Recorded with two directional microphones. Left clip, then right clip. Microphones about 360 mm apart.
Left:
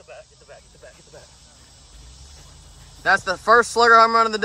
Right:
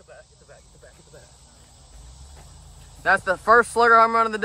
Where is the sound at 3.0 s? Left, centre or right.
Centre.